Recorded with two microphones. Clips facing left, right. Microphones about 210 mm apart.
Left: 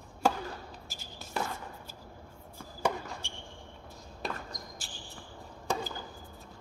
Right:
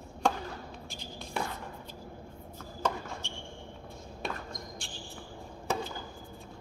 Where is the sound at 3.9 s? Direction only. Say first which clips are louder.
Even; centre (ahead or behind).